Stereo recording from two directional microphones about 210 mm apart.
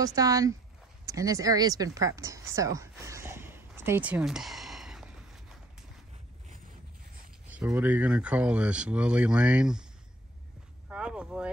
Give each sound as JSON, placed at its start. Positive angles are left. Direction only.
{"t": 0.0, "sound": "speech", "side_deg": -15}
{"t": 1.0, "sound": "a sound", "side_deg": -15}
{"t": 7.4, "sound": "speech", "side_deg": -5}
{"t": 10.9, "sound": "speech", "side_deg": -5}